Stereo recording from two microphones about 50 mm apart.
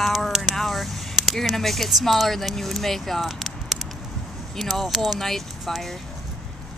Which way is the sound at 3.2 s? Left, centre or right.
Centre.